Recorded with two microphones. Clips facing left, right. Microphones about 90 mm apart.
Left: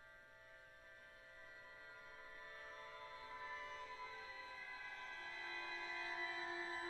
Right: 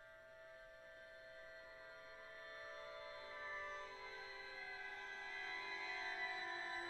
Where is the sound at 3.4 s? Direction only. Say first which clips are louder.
Right 1 dB; 30° right (ahead or behind).